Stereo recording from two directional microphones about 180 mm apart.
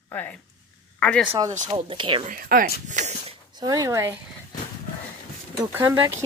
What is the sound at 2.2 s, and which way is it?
Speech, 50° right (ahead or behind).